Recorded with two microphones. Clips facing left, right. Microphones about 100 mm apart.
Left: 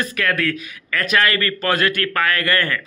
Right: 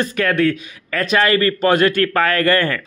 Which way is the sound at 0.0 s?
30° right (ahead or behind).